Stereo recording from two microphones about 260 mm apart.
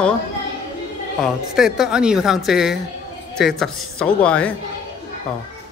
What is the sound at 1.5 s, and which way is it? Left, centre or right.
Speech, centre.